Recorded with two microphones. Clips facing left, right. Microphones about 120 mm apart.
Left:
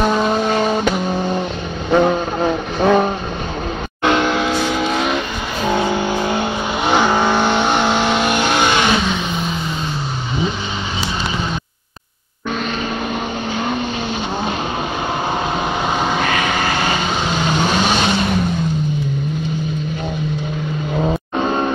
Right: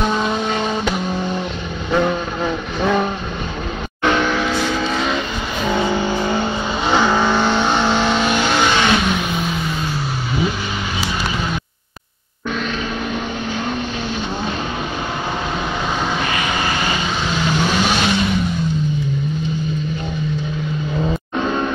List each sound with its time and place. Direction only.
0.3 s vehicle: 45° left (ahead or behind)
1.9 s vehicle: 35° left (ahead or behind)
4.0 s vehicle: 25° left (ahead or behind)
5.6 s vehicle: 35° left (ahead or behind)
6.2 s vehicle: 15° left (ahead or behind)
16.0 s vehicle: 35° left (ahead or behind)
21.0 s vehicle: 35° left (ahead or behind)